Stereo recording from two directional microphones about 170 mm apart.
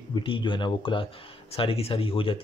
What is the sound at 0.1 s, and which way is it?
Speech, 30° left (ahead or behind).